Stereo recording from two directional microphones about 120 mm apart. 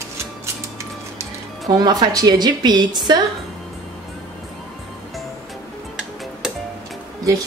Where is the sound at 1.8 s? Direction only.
35° right (ahead or behind).